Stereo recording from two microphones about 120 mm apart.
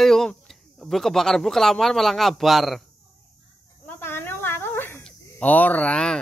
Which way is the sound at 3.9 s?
20° left (ahead or behind).